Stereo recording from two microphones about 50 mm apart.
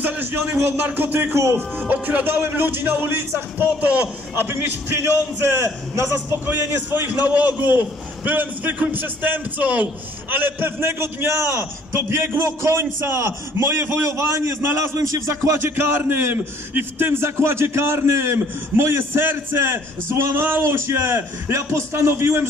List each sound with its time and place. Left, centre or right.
0.0 s a man's voice: right
0.6 s speech: right
1.3 s a man's voice: right
1.9 s a man's voice: right
3.6 s a man's voice: right
4.4 s a man's voice: right
6.4 s a man's voice: right
10.3 s a man's voice: right
14.1 s a man's voice: right
15.7 s a man's voice: right